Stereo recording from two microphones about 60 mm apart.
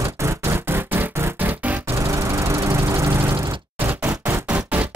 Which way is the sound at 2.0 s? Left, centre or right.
Right.